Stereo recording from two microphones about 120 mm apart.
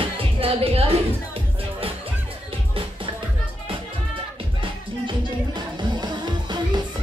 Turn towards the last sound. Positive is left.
turn(degrees=-35)  # may be behind; listen again after turning